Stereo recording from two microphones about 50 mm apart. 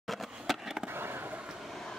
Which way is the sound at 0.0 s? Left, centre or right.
Centre.